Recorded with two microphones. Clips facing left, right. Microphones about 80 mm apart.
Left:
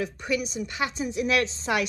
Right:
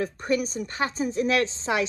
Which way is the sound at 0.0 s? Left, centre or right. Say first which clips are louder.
Right 3 dB; right.